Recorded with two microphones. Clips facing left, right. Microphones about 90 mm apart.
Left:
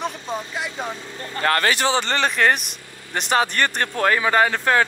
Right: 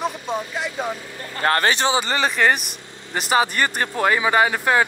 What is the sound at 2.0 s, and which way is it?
Speech, 5° right (ahead or behind).